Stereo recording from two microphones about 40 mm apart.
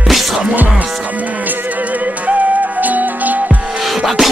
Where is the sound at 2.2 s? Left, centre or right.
Right.